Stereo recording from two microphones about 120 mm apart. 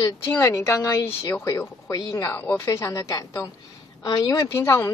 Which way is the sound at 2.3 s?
15° left (ahead or behind).